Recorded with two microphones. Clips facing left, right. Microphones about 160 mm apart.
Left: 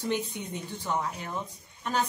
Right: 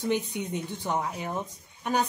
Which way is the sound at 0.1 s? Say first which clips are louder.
Right 4 dB; 15° right (ahead or behind).